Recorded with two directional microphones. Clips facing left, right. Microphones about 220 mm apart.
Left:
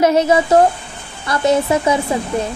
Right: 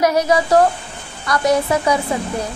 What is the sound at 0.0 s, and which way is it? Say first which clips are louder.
Speech: left 3 dB; 25° left (ahead or behind).